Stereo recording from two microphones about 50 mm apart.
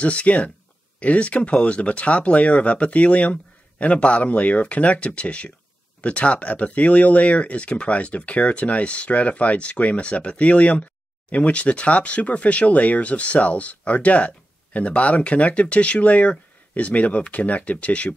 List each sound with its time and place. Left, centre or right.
0.0 s speech: left